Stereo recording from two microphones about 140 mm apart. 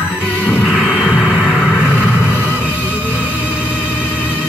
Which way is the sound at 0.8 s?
10° left (ahead or behind).